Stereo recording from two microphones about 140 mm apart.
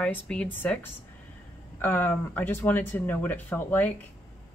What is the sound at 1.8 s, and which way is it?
Speech, 15° left (ahead or behind).